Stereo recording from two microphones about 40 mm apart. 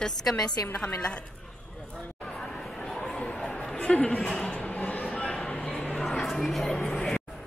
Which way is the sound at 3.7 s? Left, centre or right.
Left.